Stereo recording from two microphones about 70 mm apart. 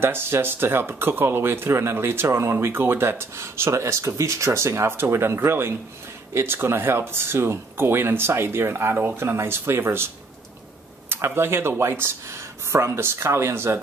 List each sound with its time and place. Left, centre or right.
0.0 s speech: right